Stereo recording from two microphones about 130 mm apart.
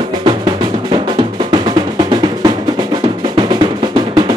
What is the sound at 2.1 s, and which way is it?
Music, 35° right (ahead or behind).